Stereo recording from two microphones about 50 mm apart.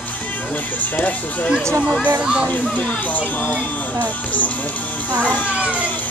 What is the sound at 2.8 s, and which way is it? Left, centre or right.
Speech, left.